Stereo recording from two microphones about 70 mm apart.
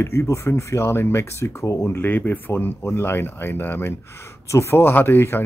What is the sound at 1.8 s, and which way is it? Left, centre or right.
Speech, left.